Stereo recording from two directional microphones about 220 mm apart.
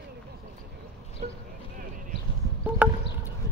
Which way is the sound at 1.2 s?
35° right (ahead or behind).